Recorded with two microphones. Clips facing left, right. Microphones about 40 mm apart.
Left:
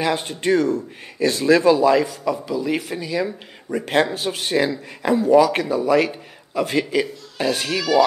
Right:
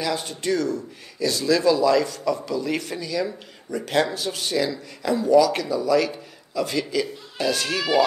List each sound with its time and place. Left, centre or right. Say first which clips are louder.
0.0 s a man's voice: left 4 dB; left